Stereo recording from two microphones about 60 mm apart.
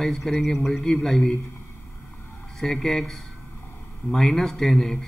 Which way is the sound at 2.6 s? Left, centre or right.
Centre.